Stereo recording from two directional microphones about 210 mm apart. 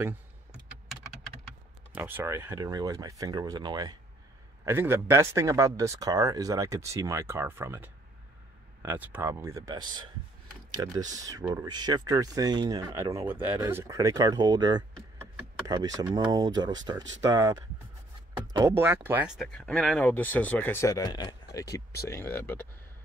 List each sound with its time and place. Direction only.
2.0 s speech: 10° right (ahead or behind); by 22.7 s 10° left (ahead or behind)